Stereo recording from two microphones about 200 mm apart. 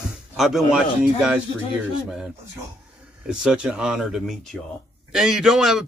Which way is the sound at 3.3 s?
5° right (ahead or behind).